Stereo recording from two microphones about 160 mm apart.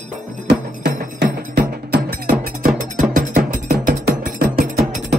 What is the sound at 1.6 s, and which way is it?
Music, 75° right (ahead or behind).